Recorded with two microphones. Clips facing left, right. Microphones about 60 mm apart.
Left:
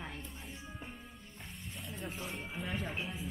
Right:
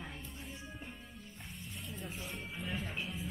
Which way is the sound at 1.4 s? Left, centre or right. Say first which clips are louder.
Left 1 dB; centre.